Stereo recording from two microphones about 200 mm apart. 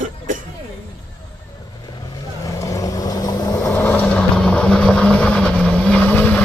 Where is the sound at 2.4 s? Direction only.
15° left (ahead or behind).